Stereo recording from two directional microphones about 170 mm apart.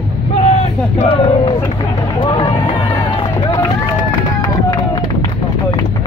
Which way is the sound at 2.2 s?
30° left (ahead or behind).